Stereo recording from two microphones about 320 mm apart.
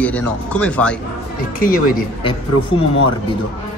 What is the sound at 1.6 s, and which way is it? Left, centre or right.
Speech, left.